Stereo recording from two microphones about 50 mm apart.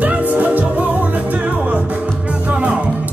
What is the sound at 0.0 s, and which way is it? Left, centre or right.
Music, right.